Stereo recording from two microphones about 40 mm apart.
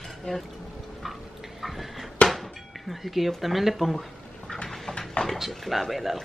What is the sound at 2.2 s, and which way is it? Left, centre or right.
Speech, centre.